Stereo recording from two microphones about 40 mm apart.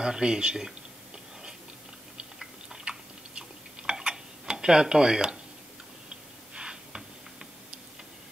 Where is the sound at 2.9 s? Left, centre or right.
Right.